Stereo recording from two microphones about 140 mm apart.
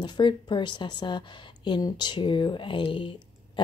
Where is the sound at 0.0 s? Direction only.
35° left (ahead or behind).